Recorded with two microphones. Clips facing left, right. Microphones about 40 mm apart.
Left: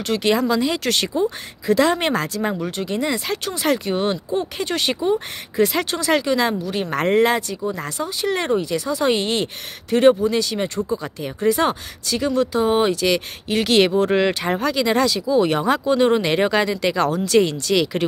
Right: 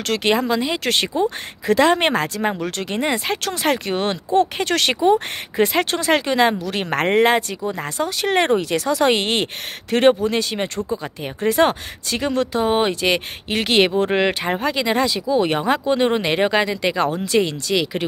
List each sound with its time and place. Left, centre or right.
0.2 s speech: right
2.6 s speech: right
3.0 s speech: right
5.6 s speech: right
6.6 s speech: right
6.9 s speech: right
8.0 s speech: right; by 18.0 s centre